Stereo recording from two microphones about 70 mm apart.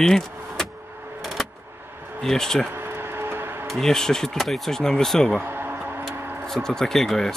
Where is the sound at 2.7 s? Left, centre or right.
Right.